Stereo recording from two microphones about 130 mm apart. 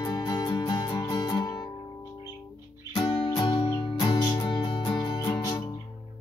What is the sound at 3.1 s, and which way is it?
Music, 35° left (ahead or behind).